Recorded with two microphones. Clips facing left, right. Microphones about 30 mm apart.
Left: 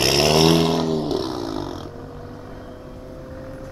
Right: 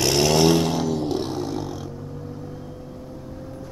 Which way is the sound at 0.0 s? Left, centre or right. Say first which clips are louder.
Left 2 dB; left.